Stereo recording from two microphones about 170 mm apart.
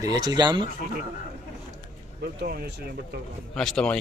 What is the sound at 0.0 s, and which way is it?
Speech, 25° right (ahead or behind).